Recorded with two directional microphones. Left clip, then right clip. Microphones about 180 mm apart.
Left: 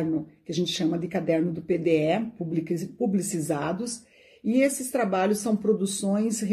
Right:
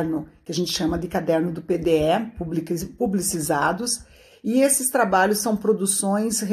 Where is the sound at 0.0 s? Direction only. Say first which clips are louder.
Right 2 dB; centre (ahead or behind).